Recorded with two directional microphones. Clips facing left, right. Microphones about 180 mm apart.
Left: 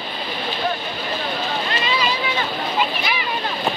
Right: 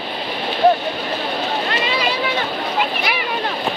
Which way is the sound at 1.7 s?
60° right (ahead or behind).